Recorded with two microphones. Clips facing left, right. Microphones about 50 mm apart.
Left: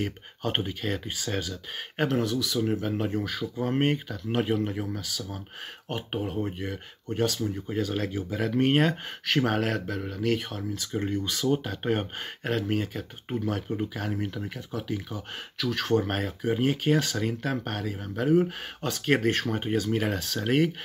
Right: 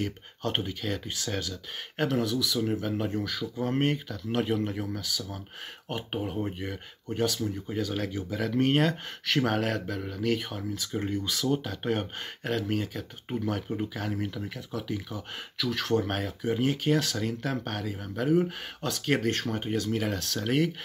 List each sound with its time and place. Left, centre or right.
0.4 s speech: left
2.2 s speech: centre
7.7 s speech: centre
18.9 s speech: left